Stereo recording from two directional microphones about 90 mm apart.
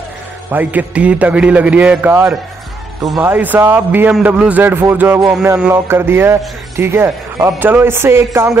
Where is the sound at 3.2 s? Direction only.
20° right (ahead or behind).